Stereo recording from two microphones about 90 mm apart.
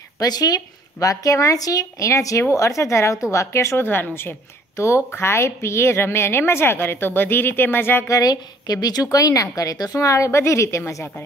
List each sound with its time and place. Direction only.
0.2 s a woman's voice: 45° left (ahead or behind); by 8.1 s 25° left (ahead or behind)
8.1 s speech: 45° left (ahead or behind)